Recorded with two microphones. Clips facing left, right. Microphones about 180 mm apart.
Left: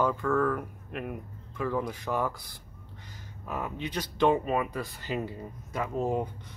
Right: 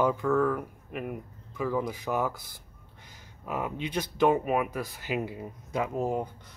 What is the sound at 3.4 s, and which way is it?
Speech, 15° right (ahead or behind).